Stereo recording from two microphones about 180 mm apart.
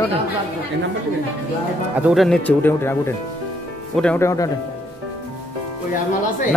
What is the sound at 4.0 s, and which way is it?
Speech, 10° left (ahead or behind).